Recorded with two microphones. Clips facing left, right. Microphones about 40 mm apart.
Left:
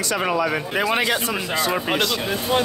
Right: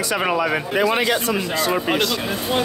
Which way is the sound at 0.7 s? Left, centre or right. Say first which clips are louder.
Right 2 dB; centre.